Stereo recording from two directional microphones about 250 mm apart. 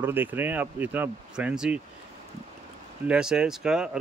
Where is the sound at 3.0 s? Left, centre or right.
Centre.